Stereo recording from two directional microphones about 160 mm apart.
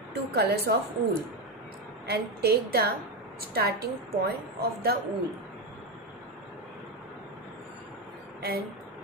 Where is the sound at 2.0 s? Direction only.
85° right.